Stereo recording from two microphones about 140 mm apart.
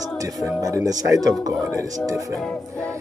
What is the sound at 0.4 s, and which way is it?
Speech, 25° right (ahead or behind).